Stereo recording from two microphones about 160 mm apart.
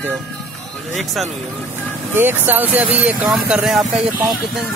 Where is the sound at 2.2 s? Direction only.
15° right (ahead or behind).